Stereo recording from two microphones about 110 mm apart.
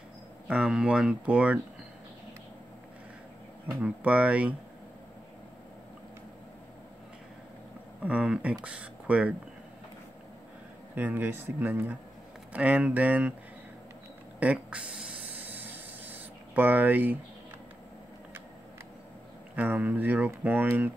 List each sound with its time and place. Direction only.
0.5 s speech: 10° right (ahead or behind)
3.8 s speech: 10° right (ahead or behind)
8.0 s speech: 10° right (ahead or behind)
11.0 s speech: 15° right (ahead or behind)
14.4 s a sound: 10° right (ahead or behind)
19.5 s speech: 15° right (ahead or behind)